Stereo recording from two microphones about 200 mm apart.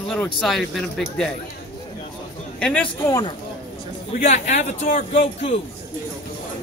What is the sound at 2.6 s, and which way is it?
Speech, 5° left (ahead or behind).